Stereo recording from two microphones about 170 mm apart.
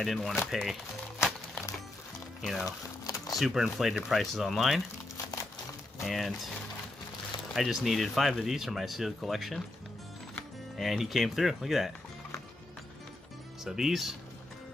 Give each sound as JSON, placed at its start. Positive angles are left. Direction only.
{"t": 0.0, "sound": "speech", "side_deg": 0}
{"t": 2.4, "sound": "speech", "side_deg": 0}
{"t": 3.0, "sound": "a sound", "side_deg": 20}
{"t": 3.3, "sound": "speech", "side_deg": 0}
{"t": 5.1, "sound": "music", "side_deg": 20}
{"t": 6.0, "sound": "speech", "side_deg": 0}
{"t": 7.5, "sound": "speech", "side_deg": 0}
{"t": 10.8, "sound": "speech", "side_deg": 0}
{"t": 13.7, "sound": "speech", "side_deg": 0}